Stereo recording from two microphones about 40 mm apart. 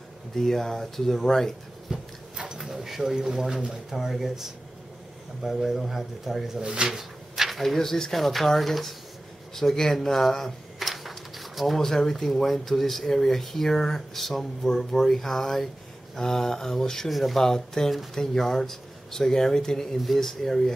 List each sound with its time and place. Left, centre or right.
0.4 s speech: centre
1.9 s tick-tock: centre
2.6 s speech: centre
3.9 s speech: centre
6.6 s speech: right
6.9 s speech: centre
17.1 s speech: centre